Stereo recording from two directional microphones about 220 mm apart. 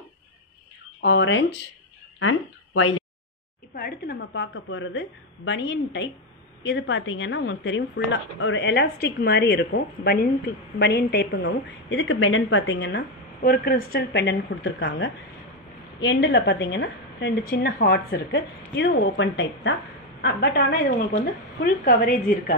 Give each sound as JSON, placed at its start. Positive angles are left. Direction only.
{"t": 1.0, "sound": "speech", "side_deg": 55}
{"t": 2.1, "sound": "speech", "side_deg": 65}
{"t": 3.7, "sound": "speech", "side_deg": 45}
{"t": 4.3, "sound": "a woman's voice", "side_deg": 60}